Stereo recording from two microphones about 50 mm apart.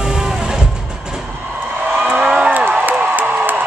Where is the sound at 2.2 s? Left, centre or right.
Centre.